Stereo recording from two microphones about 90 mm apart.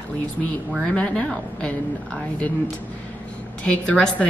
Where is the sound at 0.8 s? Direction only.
10° left (ahead or behind).